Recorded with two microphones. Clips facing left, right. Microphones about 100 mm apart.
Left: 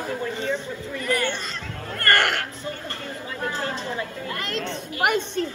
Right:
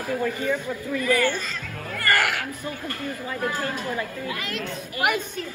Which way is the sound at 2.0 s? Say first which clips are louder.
Left 2 dB; 5° right (ahead or behind).